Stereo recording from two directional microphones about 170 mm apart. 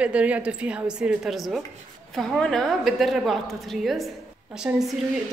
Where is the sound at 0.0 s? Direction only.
5° right (ahead or behind).